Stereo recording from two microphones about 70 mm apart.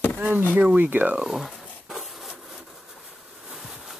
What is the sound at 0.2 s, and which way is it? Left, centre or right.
Speech, right.